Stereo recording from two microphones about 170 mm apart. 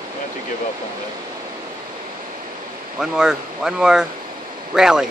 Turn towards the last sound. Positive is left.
turn(degrees=-5)  # may be behind; listen again after turning